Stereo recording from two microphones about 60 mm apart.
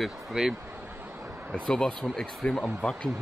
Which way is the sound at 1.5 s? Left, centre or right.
Centre.